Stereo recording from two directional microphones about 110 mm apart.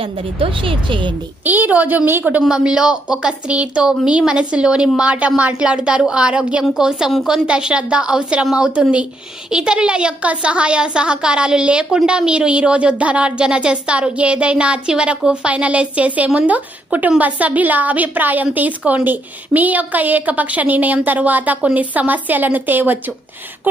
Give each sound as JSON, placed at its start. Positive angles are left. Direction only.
{"t": 0.0, "sound": "speech", "side_deg": -55}
{"t": 1.4, "sound": "a woman's voice", "side_deg": -15}